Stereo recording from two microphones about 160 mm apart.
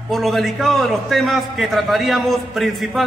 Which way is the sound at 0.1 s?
Centre (ahead or behind).